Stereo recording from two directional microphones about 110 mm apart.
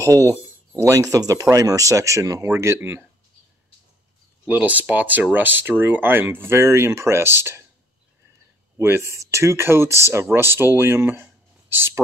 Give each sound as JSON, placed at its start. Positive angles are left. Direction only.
{"t": 0.0, "sound": "speech", "side_deg": -30}
{"t": 4.5, "sound": "speech", "side_deg": -15}
{"t": 8.7, "sound": "speech", "side_deg": -25}